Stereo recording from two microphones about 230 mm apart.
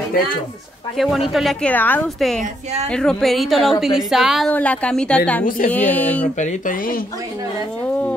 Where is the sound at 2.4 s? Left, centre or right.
Right.